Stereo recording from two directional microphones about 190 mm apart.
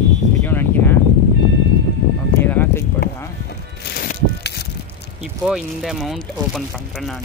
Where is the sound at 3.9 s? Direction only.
60° left (ahead or behind).